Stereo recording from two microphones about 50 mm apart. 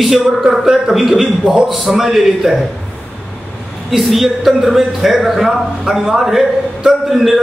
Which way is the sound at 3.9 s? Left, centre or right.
Centre.